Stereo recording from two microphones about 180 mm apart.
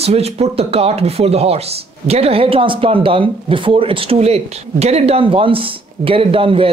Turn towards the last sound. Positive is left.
turn(degrees=-30)  # may be behind; listen again after turning